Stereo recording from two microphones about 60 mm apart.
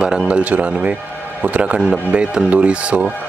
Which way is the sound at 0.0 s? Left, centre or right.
Centre.